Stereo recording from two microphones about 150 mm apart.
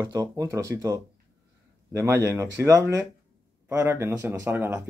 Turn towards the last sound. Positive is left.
turn(degrees=-15)  # may be behind; listen again after turning